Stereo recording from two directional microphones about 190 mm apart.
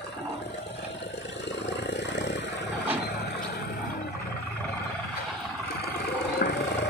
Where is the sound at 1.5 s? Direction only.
65° left (ahead or behind).